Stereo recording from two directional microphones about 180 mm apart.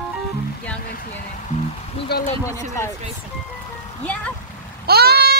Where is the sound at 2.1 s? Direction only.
65° left (ahead or behind).